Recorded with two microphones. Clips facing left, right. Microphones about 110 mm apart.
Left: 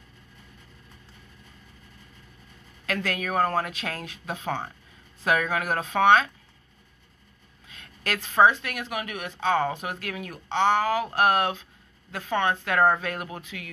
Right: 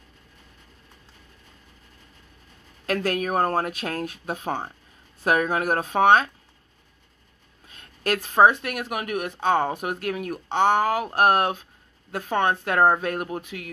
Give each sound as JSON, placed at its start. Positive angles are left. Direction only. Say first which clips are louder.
{"t": 2.9, "sound": "speech", "louder": "right 4 dB", "side_deg": -40}
{"t": 7.8, "sound": "speech", "louder": "right 6 dB", "side_deg": -45}